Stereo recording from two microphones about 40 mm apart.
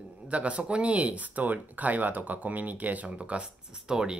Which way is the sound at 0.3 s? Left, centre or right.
Right.